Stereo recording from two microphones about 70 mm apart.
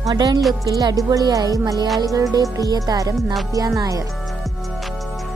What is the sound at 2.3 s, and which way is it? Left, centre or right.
Speech, right.